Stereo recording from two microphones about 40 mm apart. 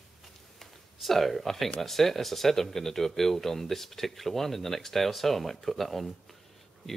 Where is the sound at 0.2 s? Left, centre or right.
Centre.